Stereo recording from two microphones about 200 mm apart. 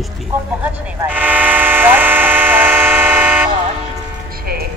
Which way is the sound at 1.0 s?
10° right (ahead or behind).